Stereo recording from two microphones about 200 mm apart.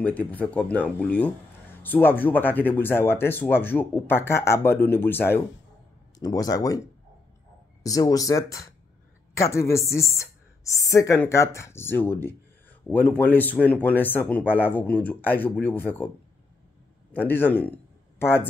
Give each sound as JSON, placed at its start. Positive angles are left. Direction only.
{"t": 0.0, "sound": "speech", "side_deg": 10}
{"t": 7.8, "sound": "speech", "side_deg": 15}
{"t": 17.1, "sound": "speech", "side_deg": 10}